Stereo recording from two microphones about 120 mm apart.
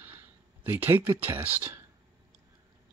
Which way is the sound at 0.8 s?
15° right (ahead or behind).